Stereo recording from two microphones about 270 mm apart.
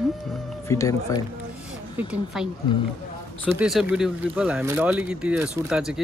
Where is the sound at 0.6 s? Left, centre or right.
Centre.